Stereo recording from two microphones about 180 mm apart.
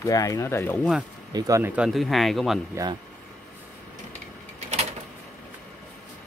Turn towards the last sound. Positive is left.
turn(degrees=-40)  # may be behind; listen again after turning